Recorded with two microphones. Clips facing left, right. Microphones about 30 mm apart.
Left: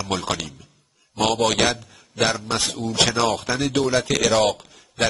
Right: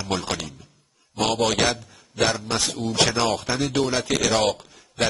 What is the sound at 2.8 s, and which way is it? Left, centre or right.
Speech, right.